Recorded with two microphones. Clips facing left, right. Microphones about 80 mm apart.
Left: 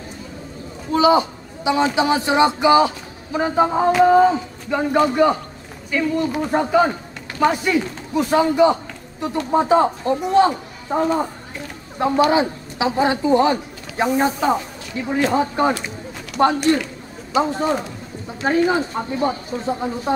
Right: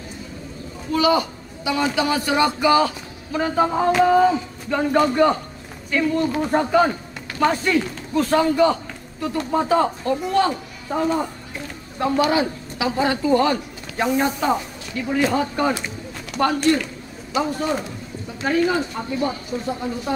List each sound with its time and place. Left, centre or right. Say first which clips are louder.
0.9 s a man's voice: left 4 dB; left
4.7 s a man's voice: left 1 dB; centre